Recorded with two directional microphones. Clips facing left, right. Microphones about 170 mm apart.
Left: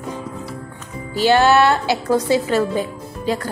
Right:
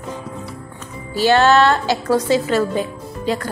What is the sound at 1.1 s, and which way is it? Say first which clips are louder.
A man's voice: even; 15° left (ahead or behind).